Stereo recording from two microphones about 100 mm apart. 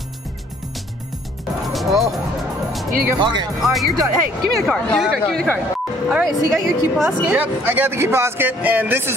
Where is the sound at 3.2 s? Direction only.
50° right (ahead or behind).